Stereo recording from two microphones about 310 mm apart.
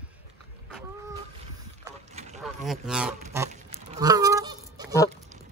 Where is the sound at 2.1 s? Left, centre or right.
Right.